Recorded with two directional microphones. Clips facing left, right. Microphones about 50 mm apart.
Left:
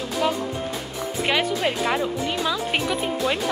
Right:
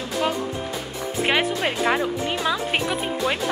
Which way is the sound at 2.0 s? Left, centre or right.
Centre.